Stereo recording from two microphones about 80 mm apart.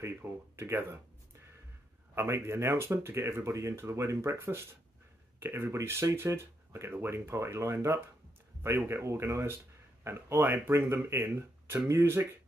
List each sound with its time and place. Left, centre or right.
0.0 s speech: right
2.1 s speech: right